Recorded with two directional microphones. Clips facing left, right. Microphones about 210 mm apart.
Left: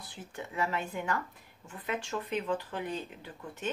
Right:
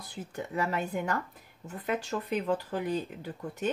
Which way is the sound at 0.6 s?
40° right (ahead or behind).